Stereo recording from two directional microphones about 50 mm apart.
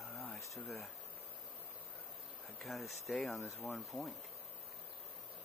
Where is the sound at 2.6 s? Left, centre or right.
Centre.